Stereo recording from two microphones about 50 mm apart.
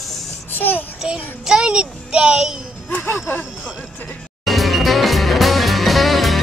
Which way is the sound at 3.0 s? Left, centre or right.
Left.